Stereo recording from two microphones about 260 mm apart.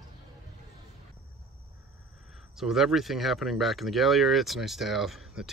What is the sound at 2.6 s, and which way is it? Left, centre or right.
Speech, centre.